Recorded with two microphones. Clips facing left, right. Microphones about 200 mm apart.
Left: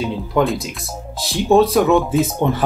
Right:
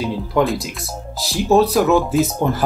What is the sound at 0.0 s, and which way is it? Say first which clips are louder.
Speech: even; centre (ahead or behind).